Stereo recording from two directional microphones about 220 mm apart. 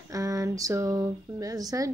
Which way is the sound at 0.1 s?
15° right (ahead or behind).